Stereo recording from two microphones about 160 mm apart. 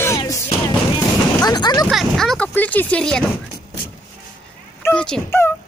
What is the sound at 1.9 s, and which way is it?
Speech, centre (ahead or behind).